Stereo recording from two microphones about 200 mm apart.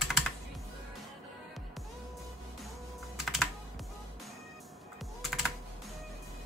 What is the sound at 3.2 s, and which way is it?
Computer keyboard, centre (ahead or behind).